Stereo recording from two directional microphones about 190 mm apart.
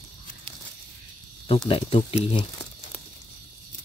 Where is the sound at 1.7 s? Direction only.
30° left (ahead or behind).